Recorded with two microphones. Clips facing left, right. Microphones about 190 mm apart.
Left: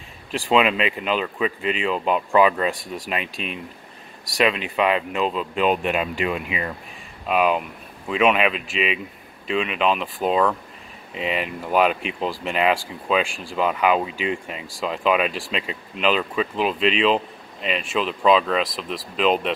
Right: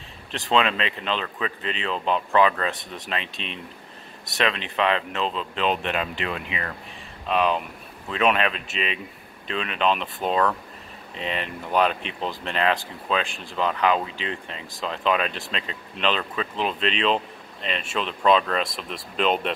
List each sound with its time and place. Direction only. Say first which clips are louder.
0.3 s speech: left 3 dB; 10° left (ahead or behind)
4.4 s speech: left 4 dB; 10° left (ahead or behind)